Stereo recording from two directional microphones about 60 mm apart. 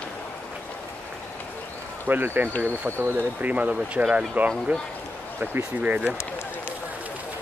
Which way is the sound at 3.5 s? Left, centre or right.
Right.